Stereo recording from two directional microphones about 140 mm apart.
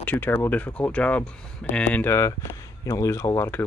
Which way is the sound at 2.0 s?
20° left (ahead or behind).